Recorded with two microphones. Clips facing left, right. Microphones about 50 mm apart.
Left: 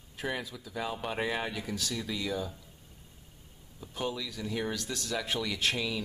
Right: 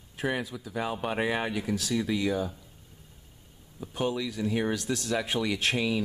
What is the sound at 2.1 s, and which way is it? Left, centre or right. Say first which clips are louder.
Speech: right 6 dB; right.